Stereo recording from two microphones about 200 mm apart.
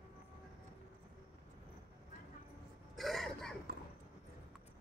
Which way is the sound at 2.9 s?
Centre (ahead or behind).